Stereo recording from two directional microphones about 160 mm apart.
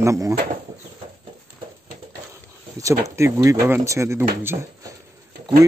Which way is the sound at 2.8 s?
20° right (ahead or behind).